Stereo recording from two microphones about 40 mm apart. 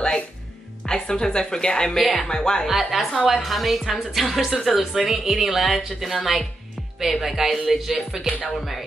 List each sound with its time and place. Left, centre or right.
0.8 s a woman's voice: left
2.0 s speech: centre
2.2 s a woman's voice: centre
2.6 s speech: centre
7.9 s music: centre
8.5 s speech: centre